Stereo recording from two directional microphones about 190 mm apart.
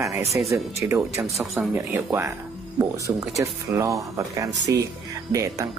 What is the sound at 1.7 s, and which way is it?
Speech, 10° right (ahead or behind).